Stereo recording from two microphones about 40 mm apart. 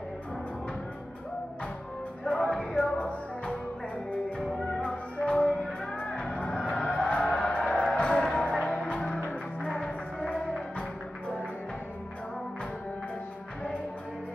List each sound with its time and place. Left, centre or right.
2.2 s music: left
4.6 s music: centre
4.8 s music: left
8.0 s music: left